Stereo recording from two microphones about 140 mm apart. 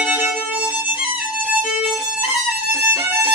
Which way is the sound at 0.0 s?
15° right (ahead or behind).